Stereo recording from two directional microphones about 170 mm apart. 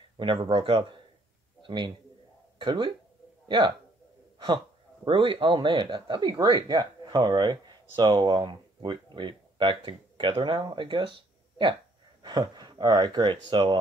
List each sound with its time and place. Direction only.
0.2 s a man's voice: 30° right (ahead or behind)
5.0 s speech: 30° right (ahead or behind)